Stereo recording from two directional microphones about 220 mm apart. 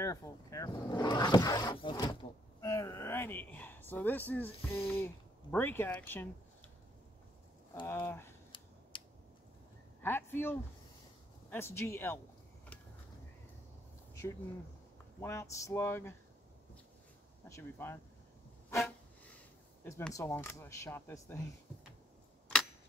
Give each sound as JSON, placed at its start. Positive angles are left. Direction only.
{"t": 0.0, "sound": "vehicle", "side_deg": 15}
{"t": 2.6, "sound": "a sound", "side_deg": 15}
{"t": 4.8, "sound": "speech", "side_deg": 10}
{"t": 7.8, "sound": "speech", "side_deg": 10}
{"t": 8.9, "sound": "a sound", "side_deg": 20}
{"t": 10.0, "sound": "speech", "side_deg": 10}
{"t": 15.1, "sound": "speech", "side_deg": 10}
{"t": 17.5, "sound": "speech", "side_deg": 10}